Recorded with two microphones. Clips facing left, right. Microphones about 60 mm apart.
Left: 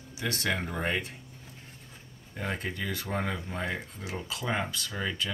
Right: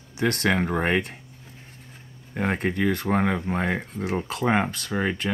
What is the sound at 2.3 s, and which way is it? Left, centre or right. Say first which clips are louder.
Speech: right 9 dB; right.